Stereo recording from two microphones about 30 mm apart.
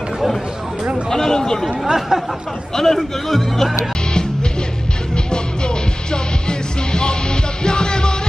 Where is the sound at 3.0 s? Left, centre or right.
Centre.